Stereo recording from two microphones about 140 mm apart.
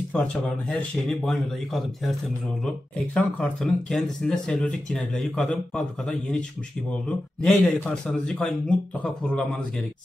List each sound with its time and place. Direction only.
0.1 s speech: 10° left (ahead or behind)
3.2 s a man's voice: 10° left (ahead or behind)